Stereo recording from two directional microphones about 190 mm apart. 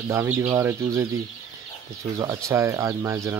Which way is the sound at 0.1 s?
15° right (ahead or behind).